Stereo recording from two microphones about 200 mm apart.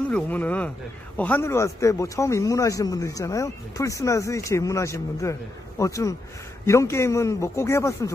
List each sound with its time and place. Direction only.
0.1 s speech: 10° left (ahead or behind)